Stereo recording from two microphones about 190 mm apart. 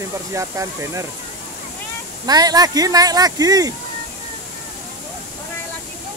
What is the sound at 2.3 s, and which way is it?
Speech, 20° right (ahead or behind).